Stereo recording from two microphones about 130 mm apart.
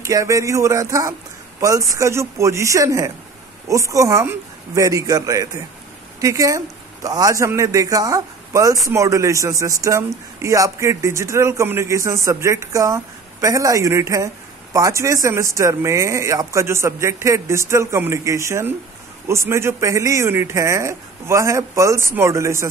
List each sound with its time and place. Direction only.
0.0 s a man's voice: 25° right (ahead or behind)